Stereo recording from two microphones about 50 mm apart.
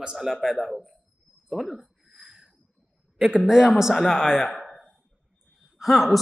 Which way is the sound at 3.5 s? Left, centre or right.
Centre.